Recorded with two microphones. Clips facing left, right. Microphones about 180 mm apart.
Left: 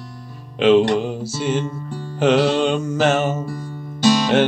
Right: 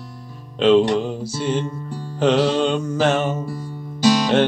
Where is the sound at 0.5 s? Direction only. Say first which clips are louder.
Left 1 dB; 5° left (ahead or behind).